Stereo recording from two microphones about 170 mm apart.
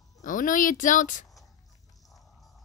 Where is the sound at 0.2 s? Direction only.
50° left (ahead or behind).